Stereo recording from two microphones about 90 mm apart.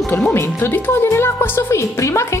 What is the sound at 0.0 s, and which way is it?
Speech, 30° left (ahead or behind).